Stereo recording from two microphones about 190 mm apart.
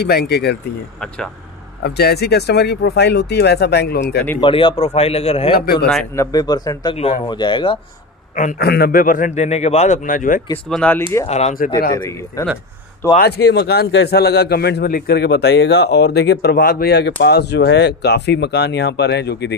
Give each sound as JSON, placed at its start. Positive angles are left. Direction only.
{"t": 0.0, "sound": "a man's voice", "side_deg": 60}
{"t": 1.0, "sound": "speech", "side_deg": 5}
{"t": 1.8, "sound": "a man's voice", "side_deg": 55}
{"t": 4.4, "sound": "a man's voice", "side_deg": 25}
{"t": 6.1, "sound": "speech", "side_deg": 20}
{"t": 8.5, "sound": "a man's voice", "side_deg": 55}
{"t": 10.7, "sound": "speech", "side_deg": 10}
{"t": 11.2, "sound": "a man's voice", "side_deg": 35}
{"t": 12.0, "sound": "speech", "side_deg": 15}
{"t": 13.2, "sound": "a man's voice", "side_deg": 60}